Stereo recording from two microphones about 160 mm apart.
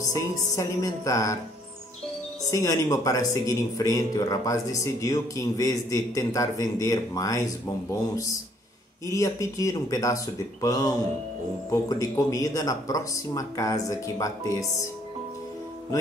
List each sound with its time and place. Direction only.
0.6 s speech: 20° left (ahead or behind)
2.5 s speech: 20° left (ahead or behind)